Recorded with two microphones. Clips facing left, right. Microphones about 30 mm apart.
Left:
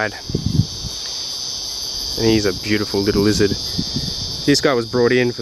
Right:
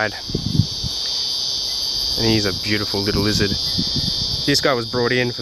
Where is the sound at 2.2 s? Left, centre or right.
Centre.